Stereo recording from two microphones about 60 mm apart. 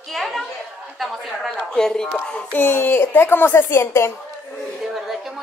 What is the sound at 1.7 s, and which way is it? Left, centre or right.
Speech, centre.